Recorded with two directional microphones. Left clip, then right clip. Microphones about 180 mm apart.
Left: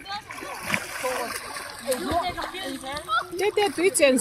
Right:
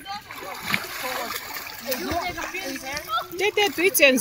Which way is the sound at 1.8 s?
Centre (ahead or behind).